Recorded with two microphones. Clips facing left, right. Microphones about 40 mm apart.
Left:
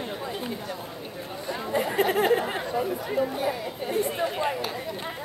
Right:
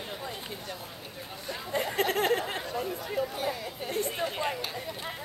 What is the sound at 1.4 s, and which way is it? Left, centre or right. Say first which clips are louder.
Speech: left 5 dB; centre.